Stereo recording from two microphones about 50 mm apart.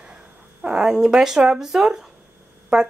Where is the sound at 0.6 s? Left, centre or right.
Centre.